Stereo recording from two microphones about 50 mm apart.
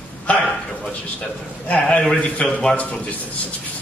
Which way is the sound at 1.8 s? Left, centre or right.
Centre.